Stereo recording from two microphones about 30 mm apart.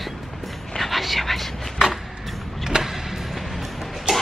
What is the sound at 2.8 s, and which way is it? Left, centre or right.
Music, centre.